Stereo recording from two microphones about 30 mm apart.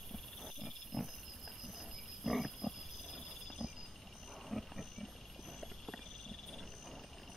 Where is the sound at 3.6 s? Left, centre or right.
Centre.